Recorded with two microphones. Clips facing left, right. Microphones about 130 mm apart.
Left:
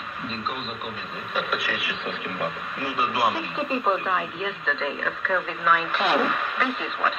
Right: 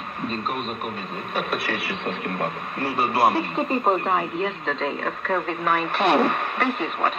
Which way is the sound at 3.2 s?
60° right (ahead or behind).